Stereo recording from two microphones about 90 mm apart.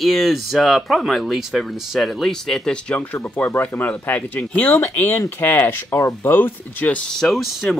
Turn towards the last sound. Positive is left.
turn(degrees=0)  # may be behind; listen again after turning